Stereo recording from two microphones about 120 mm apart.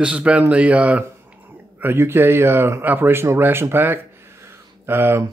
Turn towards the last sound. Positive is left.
turn(degrees=-20)  # may be behind; listen again after turning